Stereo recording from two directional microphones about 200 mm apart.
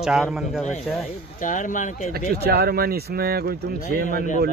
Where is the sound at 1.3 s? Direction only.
40° left (ahead or behind).